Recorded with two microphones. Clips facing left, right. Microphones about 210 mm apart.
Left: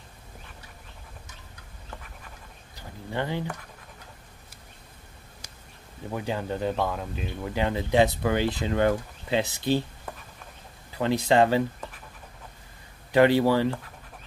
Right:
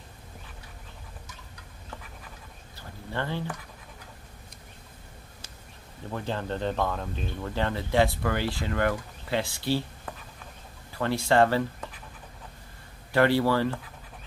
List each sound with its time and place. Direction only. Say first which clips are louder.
2.7 s a sound: left 2 dB; 15° left (ahead or behind)
6.1 s speech: left 2 dB; 10° left (ahead or behind)
11.0 s speech: left 1 dB; 15° left (ahead or behind)
13.1 s speech: left 3 dB; 15° left (ahead or behind)